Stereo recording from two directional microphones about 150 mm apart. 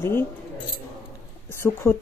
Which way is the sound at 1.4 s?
15° left (ahead or behind).